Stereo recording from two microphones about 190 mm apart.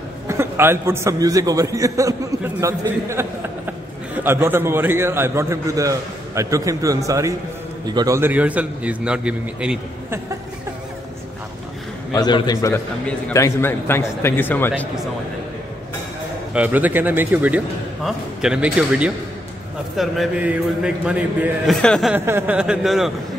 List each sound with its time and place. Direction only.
0.3 s a man's voice: 15° right (ahead or behind)
12.1 s a man's voice: 20° left (ahead or behind)
16.5 s a man's voice: 10° right (ahead or behind)
21.8 s a man's voice: 5° left (ahead or behind)
22.1 s a man's voice: 10° right (ahead or behind)